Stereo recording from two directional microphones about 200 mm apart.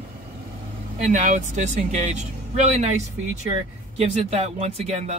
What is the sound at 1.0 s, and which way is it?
Speech, 40° right (ahead or behind).